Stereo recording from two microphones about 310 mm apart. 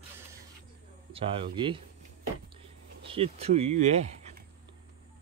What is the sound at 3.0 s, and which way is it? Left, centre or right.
Speech, centre.